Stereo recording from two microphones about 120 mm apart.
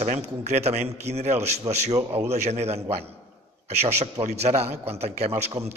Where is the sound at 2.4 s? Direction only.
65° right (ahead or behind).